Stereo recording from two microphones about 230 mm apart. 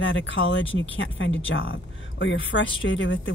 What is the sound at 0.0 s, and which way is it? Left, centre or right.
Speech, left.